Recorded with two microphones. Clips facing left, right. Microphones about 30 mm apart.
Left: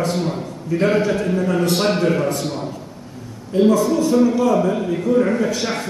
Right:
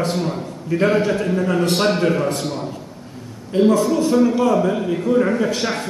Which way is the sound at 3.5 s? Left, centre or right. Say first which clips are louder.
Even; right.